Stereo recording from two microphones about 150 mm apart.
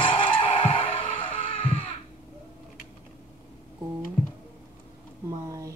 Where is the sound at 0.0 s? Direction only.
35° left (ahead or behind).